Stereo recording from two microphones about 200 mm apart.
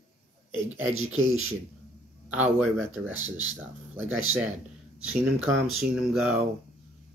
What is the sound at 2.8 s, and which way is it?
Speech, 75° right (ahead or behind).